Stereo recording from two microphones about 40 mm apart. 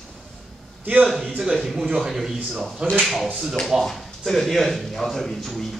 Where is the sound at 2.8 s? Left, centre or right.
Right.